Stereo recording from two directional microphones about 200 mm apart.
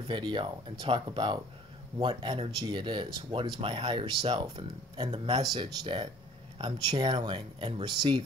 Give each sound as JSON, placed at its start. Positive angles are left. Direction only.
{"t": 0.1, "sound": "speech", "side_deg": -25}